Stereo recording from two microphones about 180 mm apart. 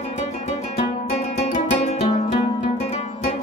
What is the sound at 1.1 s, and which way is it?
Music, 40° left (ahead or behind).